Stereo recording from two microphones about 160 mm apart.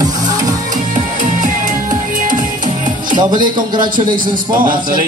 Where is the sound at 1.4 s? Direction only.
55° right (ahead or behind).